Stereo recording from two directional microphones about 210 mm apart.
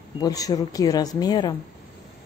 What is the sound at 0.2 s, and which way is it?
Speech, 15° left (ahead or behind).